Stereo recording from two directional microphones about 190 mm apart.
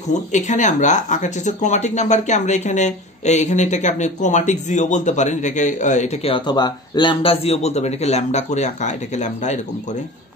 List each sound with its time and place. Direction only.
0.1 s speech: 40° left (ahead or behind)